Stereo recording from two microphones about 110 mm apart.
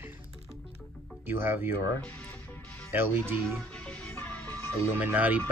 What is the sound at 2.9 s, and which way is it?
Speech, 20° right (ahead or behind).